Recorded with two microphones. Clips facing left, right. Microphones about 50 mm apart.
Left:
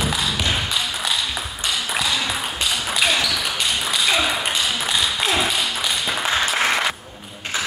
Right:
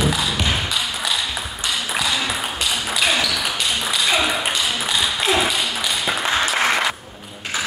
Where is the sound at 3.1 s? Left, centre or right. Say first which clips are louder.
Right 1 dB; centre.